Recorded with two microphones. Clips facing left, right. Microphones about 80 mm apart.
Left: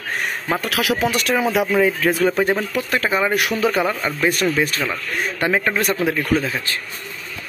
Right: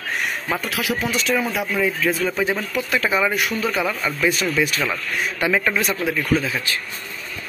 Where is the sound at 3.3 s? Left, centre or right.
Left.